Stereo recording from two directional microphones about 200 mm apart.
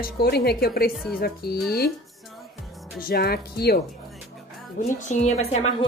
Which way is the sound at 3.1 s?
50° left (ahead or behind).